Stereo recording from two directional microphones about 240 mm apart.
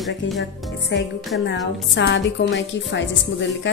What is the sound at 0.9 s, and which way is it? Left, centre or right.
Speech, left.